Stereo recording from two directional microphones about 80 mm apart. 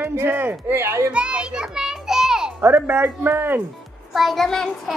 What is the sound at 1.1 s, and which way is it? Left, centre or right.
Music, centre.